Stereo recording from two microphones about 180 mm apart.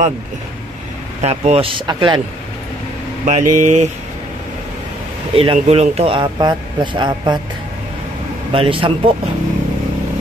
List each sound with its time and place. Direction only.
1.2 s speech: 35° right (ahead or behind)
3.3 s speech: 40° right (ahead or behind)
5.3 s speech: 30° right (ahead or behind)
8.5 s speech: 30° right (ahead or behind)